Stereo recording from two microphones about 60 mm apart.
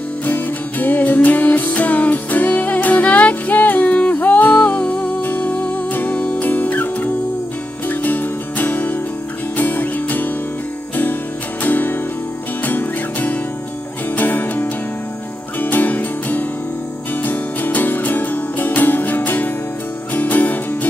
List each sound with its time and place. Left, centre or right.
0.2 s music: left
11.6 s music: left